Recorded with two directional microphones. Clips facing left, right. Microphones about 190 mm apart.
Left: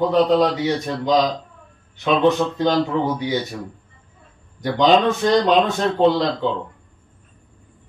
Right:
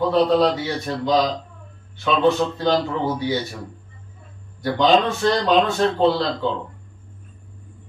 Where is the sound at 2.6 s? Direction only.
15° left (ahead or behind).